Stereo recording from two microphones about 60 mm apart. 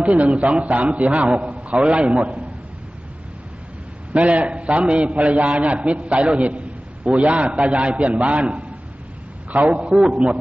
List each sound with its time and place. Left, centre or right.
0.0 s a man's voice: right
4.1 s a man's voice: right